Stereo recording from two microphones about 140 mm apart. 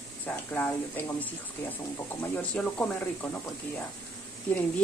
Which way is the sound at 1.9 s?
15° left (ahead or behind).